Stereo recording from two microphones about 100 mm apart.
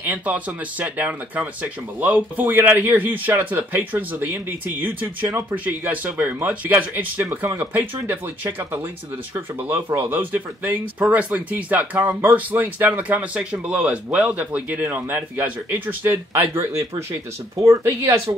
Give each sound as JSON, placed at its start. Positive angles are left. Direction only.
{"t": 0.0, "sound": "speech", "side_deg": -15}
{"t": 16.6, "sound": "speech", "side_deg": -30}